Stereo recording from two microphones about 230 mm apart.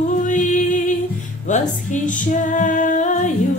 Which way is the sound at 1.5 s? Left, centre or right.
Left.